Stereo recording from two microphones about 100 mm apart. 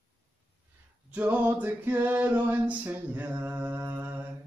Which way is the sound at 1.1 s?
15° right (ahead or behind).